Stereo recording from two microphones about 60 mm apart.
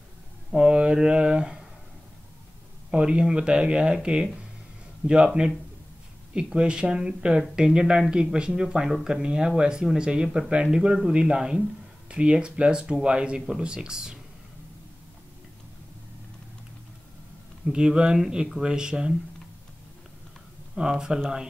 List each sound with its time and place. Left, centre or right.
0.5 s speech: centre
2.9 s speech: centre
17.6 s speech: centre
20.7 s speech: centre